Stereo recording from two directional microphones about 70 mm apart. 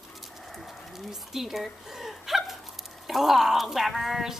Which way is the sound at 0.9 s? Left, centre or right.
Centre.